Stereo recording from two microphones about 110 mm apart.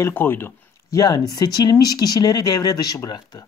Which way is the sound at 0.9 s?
35° left (ahead or behind).